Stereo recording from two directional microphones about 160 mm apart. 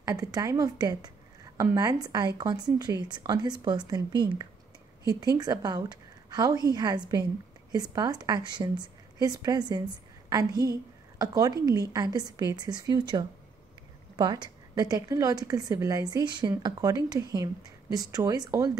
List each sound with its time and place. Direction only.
0.0 s speech: 20° right (ahead or behind)